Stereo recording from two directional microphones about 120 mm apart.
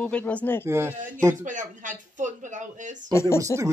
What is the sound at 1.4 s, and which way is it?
Speech, 90° right.